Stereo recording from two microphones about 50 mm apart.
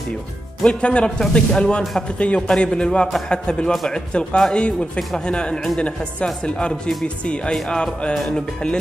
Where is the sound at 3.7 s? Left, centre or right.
Centre.